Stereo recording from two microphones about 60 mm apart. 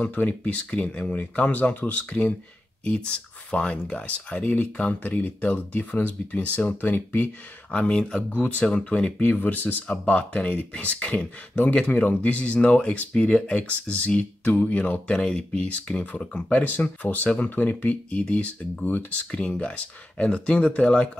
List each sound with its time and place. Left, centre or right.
0.0 s speech: left
7.7 s speech: centre
8.6 s speech: centre
9.2 s speech: left
15.1 s speech: centre